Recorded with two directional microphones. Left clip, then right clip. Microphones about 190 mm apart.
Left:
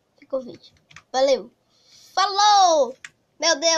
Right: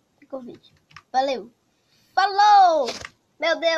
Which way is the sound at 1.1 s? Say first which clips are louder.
Left 3 dB; 15° left (ahead or behind).